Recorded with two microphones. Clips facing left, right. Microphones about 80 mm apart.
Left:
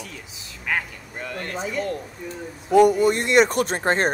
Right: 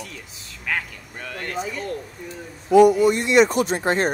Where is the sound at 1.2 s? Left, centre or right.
Left.